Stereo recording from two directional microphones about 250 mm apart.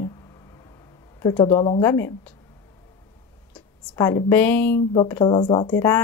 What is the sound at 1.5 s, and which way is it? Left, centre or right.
Speech, centre.